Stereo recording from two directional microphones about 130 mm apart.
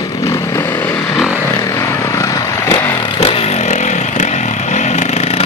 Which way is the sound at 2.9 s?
40° left (ahead or behind).